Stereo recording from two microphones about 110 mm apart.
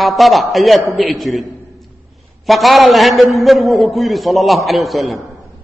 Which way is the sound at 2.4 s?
Centre (ahead or behind).